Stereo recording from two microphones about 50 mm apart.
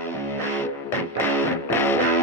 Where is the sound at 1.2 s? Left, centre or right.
Left.